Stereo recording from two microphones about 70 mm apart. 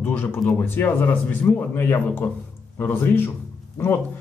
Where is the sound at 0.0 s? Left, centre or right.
Left.